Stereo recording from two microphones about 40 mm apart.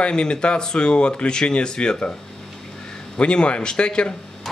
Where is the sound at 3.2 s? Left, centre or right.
Left.